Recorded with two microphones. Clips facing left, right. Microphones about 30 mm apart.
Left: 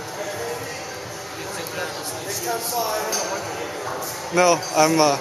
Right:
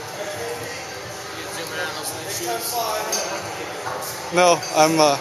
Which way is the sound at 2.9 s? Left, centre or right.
Centre.